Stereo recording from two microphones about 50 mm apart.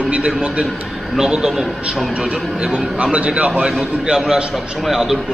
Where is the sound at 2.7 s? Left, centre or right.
Right.